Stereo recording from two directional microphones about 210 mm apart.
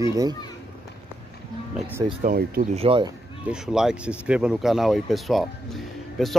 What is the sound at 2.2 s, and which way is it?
Speech, 45° right (ahead or behind).